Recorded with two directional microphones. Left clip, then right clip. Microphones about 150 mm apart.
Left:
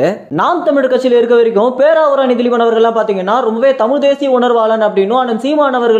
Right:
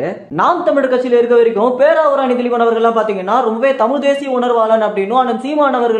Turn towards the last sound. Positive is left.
turn(degrees=30)  # may be behind; listen again after turning